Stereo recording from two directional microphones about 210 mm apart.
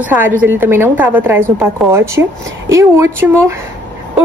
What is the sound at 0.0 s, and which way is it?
A woman's voice, 10° right (ahead or behind).